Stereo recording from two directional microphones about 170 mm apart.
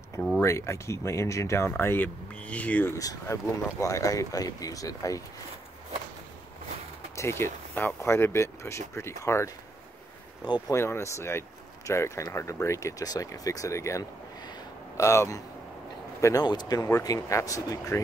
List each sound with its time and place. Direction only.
0.4 s speech: 15° left (ahead or behind)
3.0 s speech: 20° left (ahead or behind)
7.2 s speech: 15° left (ahead or behind)